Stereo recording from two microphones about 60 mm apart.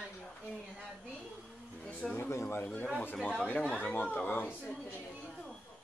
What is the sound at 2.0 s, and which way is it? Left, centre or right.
Speech, centre.